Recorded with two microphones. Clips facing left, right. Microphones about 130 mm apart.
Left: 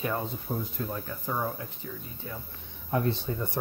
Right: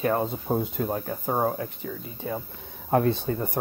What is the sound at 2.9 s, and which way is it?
Speech, 65° right (ahead or behind).